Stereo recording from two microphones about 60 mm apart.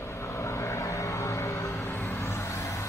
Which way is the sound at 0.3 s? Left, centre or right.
Left.